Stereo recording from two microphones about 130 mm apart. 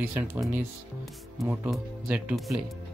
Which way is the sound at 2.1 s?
10° right (ahead or behind).